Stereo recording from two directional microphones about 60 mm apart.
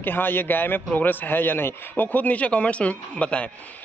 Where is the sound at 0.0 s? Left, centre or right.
Left.